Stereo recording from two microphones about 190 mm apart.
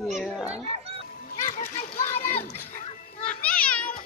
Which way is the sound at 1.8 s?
40° left (ahead or behind).